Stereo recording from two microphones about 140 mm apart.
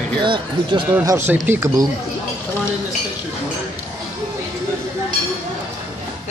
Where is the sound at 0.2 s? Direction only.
35° right (ahead or behind).